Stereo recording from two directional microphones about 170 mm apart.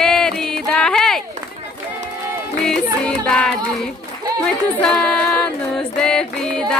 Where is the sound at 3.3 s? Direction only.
Centre (ahead or behind).